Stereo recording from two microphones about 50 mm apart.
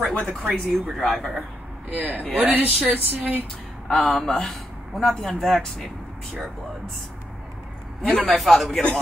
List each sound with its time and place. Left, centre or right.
0.3 s a man's voice: centre
1.9 s speech: right
3.9 s a man's voice: centre
8.0 s a man's voice: left
8.4 s a man's voice: centre